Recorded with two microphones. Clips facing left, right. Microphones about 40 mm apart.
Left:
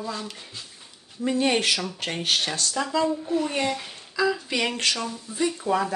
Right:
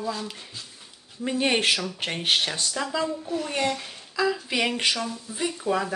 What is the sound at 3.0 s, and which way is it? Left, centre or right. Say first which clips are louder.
A child's voice: left 4 dB; centre.